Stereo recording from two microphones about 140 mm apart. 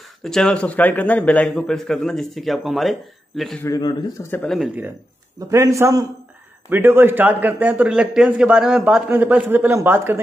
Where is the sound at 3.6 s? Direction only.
25° left (ahead or behind).